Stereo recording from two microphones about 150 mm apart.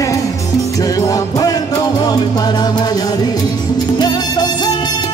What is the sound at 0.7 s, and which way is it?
Music, 25° left (ahead or behind).